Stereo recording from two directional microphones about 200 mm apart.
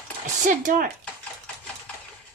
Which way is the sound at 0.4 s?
40° right (ahead or behind).